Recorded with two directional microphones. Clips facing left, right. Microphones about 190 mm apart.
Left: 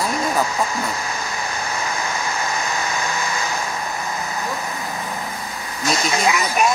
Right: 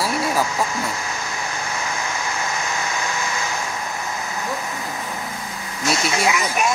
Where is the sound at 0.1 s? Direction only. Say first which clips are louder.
Even; 35° left (ahead or behind).